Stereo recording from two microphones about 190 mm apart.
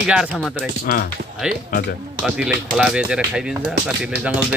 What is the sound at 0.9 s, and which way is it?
Speech, 50° left (ahead or behind).